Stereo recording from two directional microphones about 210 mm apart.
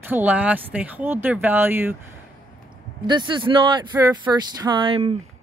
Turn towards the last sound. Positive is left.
turn(degrees=-25)  # may be behind; listen again after turning